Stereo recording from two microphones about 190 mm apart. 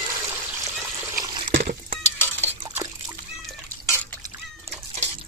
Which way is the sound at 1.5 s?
40° right (ahead or behind).